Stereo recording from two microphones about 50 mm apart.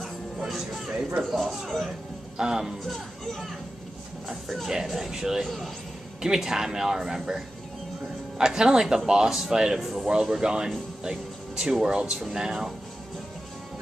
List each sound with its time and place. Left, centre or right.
0.5 s music: centre
1.2 s speech: centre
2.3 s speech: centre
2.9 s speech: centre
4.6 s speech: centre
9.8 s speech: centre
10.4 s speech: centre